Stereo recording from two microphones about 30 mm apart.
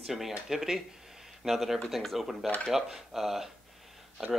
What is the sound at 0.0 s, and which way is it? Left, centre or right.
Speech, centre.